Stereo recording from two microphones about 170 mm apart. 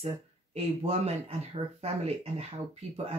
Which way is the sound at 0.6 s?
35° right (ahead or behind).